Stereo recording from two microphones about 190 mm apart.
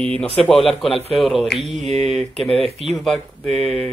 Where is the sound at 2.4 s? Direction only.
30° left (ahead or behind).